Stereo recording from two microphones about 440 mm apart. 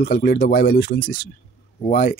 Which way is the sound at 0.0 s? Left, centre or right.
Left.